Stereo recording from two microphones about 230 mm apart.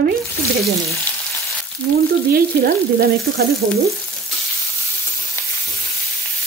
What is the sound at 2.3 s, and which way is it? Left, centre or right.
Frying, right.